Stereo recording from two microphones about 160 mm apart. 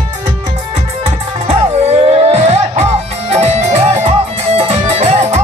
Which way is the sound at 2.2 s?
40° right (ahead or behind).